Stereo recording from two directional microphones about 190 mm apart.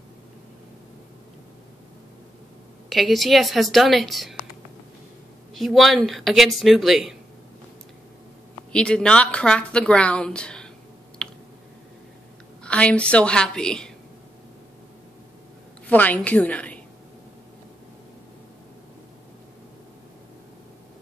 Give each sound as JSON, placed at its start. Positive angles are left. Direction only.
{"t": 2.9, "sound": "a woman's voice", "side_deg": 0}
{"t": 5.5, "sound": "a woman's voice", "side_deg": 0}
{"t": 8.7, "sound": "a woman's voice", "side_deg": 5}
{"t": 11.2, "sound": "a sound", "side_deg": 5}
{"t": 12.6, "sound": "a woman's voice", "side_deg": 5}
{"t": 15.9, "sound": "a woman's voice", "side_deg": 10}